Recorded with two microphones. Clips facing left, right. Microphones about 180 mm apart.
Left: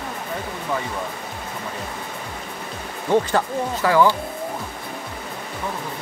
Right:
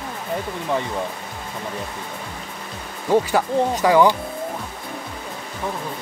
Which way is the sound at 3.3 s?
15° right (ahead or behind).